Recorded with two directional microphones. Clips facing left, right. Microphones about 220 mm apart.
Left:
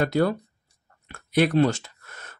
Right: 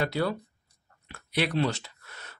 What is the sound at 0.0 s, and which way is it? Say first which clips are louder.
Speech: left 6 dB; 45° left (ahead or behind).